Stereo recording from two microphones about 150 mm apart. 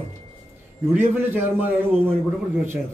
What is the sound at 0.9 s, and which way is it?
Speech, 15° right (ahead or behind).